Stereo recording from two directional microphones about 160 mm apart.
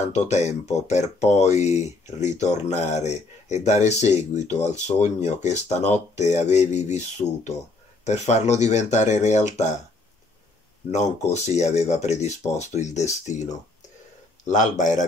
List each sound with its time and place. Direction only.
0.0 s speech: 45° left (ahead or behind)
10.9 s speech: 45° left (ahead or behind)